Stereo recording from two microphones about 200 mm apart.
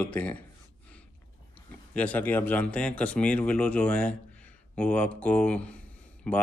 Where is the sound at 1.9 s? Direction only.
5° left (ahead or behind).